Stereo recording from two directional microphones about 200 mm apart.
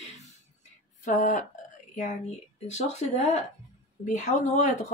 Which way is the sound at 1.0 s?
40° left (ahead or behind).